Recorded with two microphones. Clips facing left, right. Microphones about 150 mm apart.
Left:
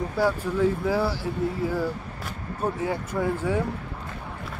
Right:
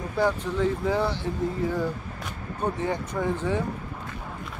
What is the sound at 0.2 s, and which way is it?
Speech, 10° left (ahead or behind).